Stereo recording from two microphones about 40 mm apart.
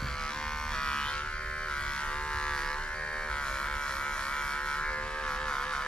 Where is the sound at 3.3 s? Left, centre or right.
Left.